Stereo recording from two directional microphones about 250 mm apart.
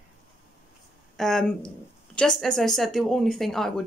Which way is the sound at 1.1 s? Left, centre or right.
Centre.